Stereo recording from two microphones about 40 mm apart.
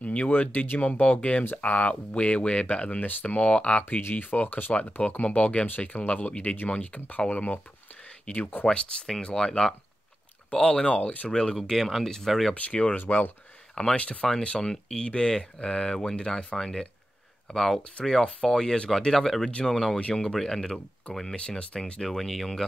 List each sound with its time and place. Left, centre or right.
0.0 s a sound: left
0.3 s speech: left
4.1 s speech: left
5.0 s speech: left
8.6 s speech: centre
10.9 s speech: left
11.2 s speech: left
11.5 s speech: centre
12.5 s speech: left
13.9 s speech: left
14.6 s speech: centre
21.5 s speech: left
22.0 s speech: centre